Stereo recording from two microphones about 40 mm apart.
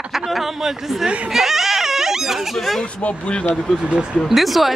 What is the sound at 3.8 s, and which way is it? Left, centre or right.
Speech, right.